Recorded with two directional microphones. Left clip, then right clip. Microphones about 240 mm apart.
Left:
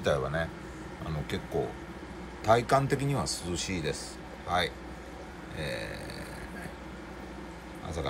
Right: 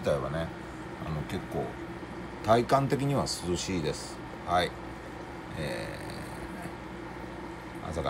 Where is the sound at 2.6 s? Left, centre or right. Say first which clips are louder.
Even; left.